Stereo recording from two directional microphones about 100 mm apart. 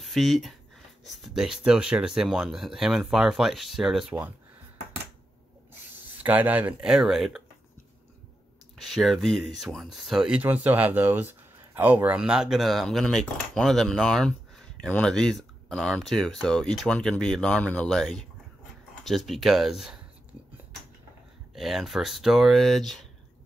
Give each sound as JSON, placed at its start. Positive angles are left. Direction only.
{"t": 0.0, "sound": "speech", "side_deg": 0}
{"t": 6.1, "sound": "speech", "side_deg": -15}
{"t": 8.7, "sound": "speech", "side_deg": 0}
{"t": 10.4, "sound": "speech", "side_deg": -20}
{"t": 21.5, "sound": "speech", "side_deg": 0}